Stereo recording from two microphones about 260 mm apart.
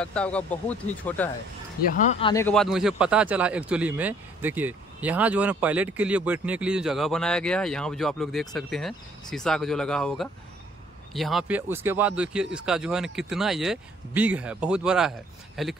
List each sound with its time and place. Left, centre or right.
0.0 s speech: centre
2.0 s speech: centre
2.4 s speech: centre